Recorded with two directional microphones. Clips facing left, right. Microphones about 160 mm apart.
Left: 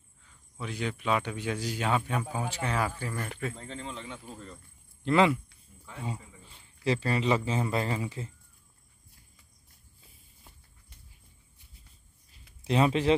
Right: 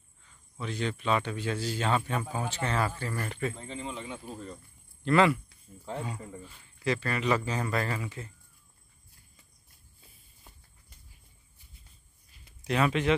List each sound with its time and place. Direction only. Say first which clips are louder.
0.6 s a man's voice: right 1 dB; 10° left (ahead or behind); by 4.6 s 15° right (ahead or behind)
5.0 s speech: even; 20° left (ahead or behind)
6.5 s a man's voice: left 2 dB; 30° left (ahead or behind)
12.6 s a man's voice: left 2 dB; 25° left (ahead or behind)